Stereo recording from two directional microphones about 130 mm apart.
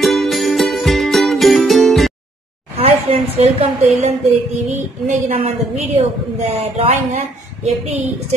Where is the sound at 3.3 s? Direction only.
55° right (ahead or behind).